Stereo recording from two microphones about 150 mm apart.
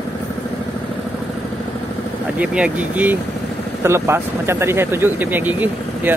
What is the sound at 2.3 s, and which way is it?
Speech, 10° right (ahead or behind).